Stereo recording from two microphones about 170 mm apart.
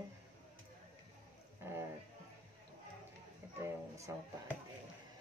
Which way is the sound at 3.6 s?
20° right (ahead or behind).